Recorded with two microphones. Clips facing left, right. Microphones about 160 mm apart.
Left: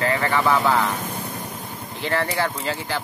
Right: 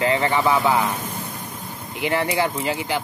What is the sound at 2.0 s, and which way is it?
Speech, 15° right (ahead or behind).